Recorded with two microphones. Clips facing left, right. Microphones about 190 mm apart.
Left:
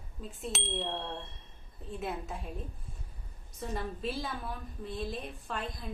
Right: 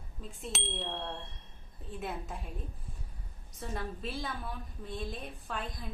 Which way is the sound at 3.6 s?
Centre (ahead or behind).